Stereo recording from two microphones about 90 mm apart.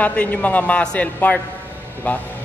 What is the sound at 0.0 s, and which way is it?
A man's voice, 15° left (ahead or behind).